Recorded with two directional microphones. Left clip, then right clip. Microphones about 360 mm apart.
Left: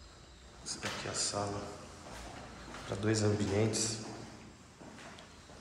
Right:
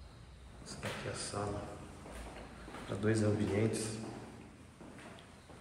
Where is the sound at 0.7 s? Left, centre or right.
Centre.